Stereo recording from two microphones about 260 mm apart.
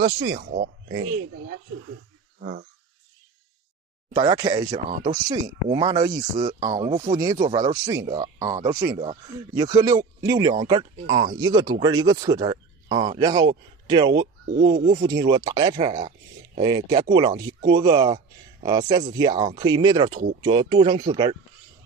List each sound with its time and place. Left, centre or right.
0.0 s speech: right
4.1 s speech: centre
4.8 s speech: right
5.3 s speech: centre
6.3 s speech: right
6.8 s speech: centre